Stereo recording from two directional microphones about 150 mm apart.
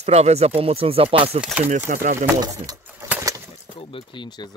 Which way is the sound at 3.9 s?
30° left (ahead or behind).